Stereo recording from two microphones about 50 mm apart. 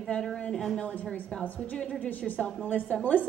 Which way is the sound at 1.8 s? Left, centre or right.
Left.